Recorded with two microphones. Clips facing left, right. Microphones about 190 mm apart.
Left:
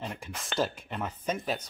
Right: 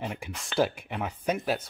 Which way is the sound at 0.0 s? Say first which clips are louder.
Right 3 dB; 10° right (ahead or behind).